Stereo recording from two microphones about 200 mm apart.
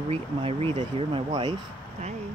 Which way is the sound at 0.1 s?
30° right (ahead or behind).